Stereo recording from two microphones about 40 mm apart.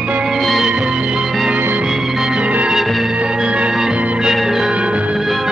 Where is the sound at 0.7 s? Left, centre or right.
Right.